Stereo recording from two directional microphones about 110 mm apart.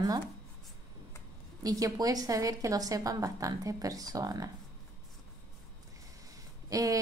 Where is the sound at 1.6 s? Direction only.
35° right (ahead or behind).